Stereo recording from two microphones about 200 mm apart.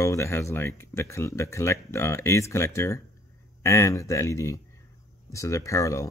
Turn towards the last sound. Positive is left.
turn(degrees=15)  # may be behind; listen again after turning